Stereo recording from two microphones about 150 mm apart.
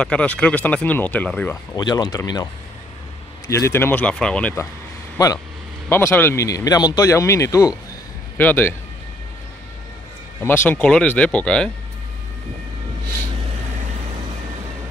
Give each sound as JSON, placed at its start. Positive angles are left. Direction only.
{"t": 0.0, "sound": "speech", "side_deg": 10}
{"t": 1.8, "sound": "speech", "side_deg": 25}
{"t": 5.1, "sound": "speech", "side_deg": 20}
{"t": 10.4, "sound": "speech", "side_deg": 15}